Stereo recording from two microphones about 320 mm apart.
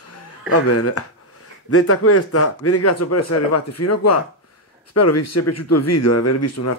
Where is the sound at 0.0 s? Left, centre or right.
Left.